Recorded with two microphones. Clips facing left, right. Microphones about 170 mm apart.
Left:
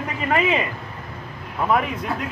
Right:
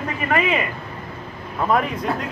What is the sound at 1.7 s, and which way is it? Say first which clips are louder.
Speech: right 1 dB; 5° left (ahead or behind).